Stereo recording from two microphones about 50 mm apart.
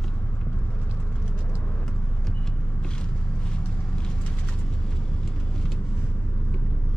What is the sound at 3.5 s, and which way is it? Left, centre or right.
Vehicle, centre.